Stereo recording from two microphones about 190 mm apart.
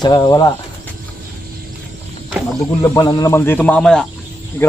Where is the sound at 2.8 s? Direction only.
20° left (ahead or behind).